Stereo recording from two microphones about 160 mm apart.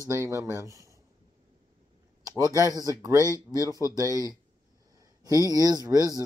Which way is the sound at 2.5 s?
20° right (ahead or behind).